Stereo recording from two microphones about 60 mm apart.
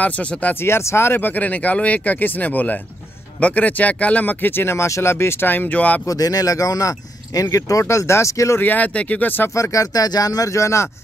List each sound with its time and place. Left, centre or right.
0.0 s speech: left
0.6 s speech: left
4.8 s speech: left
5.1 s speech: left
6.0 s speech: left
7.5 s speech: left
7.9 s speech: left
8.5 s speech: left
9.5 s speech: left